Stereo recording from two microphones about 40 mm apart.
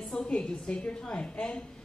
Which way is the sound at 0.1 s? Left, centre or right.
Left.